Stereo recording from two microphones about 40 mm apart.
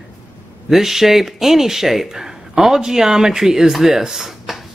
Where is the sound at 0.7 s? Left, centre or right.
Centre.